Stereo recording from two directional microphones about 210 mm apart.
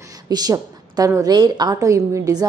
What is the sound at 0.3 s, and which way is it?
A woman's voice, 20° right (ahead or behind).